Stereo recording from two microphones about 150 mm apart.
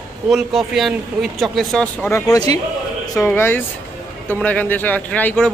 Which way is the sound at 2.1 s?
20° left (ahead or behind).